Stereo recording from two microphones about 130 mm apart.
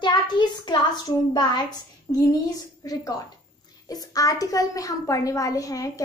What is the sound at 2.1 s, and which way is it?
A woman's voice, 20° left (ahead or behind).